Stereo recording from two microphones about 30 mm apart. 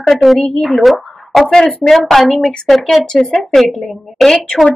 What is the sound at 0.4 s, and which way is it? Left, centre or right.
Speech, centre.